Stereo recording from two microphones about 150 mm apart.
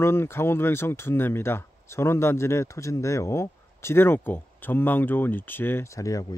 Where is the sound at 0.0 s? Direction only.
15° left (ahead or behind).